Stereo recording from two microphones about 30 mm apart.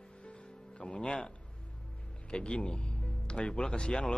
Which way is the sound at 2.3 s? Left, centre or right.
Left.